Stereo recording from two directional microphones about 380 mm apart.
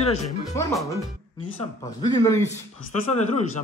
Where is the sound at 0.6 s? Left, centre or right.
Centre.